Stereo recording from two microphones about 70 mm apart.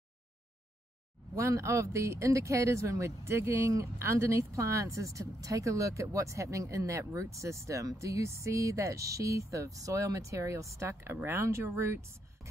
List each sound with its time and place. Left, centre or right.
1.3 s speech: right